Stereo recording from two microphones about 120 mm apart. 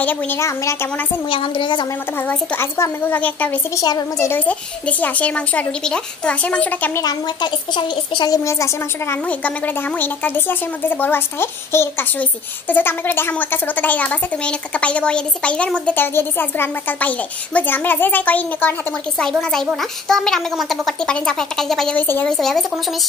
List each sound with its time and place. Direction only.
0.0 s speech: 15° left (ahead or behind)
1.3 s a woman's voice: 45° left (ahead or behind)
2.2 s a child's voice: 20° left (ahead or behind)
3.7 s speech: 30° left (ahead or behind)
4.3 s a child's voice: 15° left (ahead or behind)
7.0 s a child's voice: 35° left (ahead or behind)
9.1 s a child's voice: 10° left (ahead or behind)
19.2 s a child's voice: 5° left (ahead or behind)
22.0 s a child's voice: 15° left (ahead or behind)
22.4 s a child's voice: 5° left (ahead or behind)